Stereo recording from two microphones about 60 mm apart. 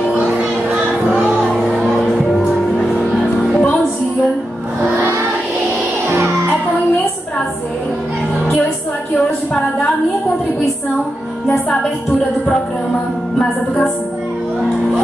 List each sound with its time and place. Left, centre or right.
0.1 s music: centre
1.9 s music: centre